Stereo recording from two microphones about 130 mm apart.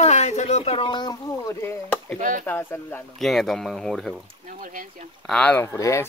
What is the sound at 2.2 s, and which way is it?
Speech, 85° right.